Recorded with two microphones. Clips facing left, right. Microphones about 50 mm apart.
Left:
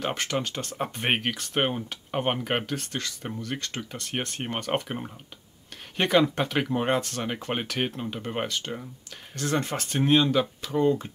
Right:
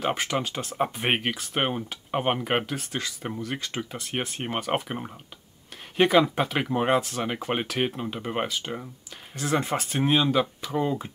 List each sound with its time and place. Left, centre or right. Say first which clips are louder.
0.0 s speech: right 2 dB; centre